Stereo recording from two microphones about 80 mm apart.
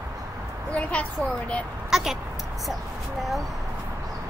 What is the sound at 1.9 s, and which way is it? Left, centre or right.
Speech, centre.